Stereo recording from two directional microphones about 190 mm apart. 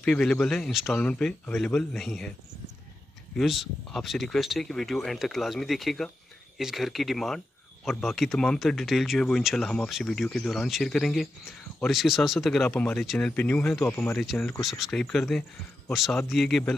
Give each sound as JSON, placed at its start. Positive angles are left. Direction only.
{"t": 0.0, "sound": "speech", "side_deg": 5}
{"t": 3.3, "sound": "speech", "side_deg": 0}